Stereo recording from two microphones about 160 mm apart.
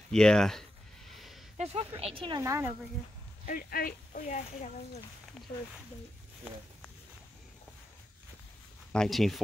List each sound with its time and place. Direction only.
0.1 s speech: 5° left (ahead or behind)
1.1 s a sound: centre (ahead or behind)
1.6 s speech: 40° right (ahead or behind)
2.4 s speech: 20° right (ahead or behind)
3.4 s speech: 65° left (ahead or behind); by 5.0 s 50° left (ahead or behind)
8.9 s speech: 5° left (ahead or behind)